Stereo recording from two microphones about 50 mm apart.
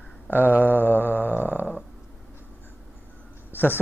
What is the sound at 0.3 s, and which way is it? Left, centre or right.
Mantra, left.